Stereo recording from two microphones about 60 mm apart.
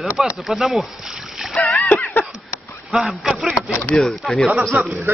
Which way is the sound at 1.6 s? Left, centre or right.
Left.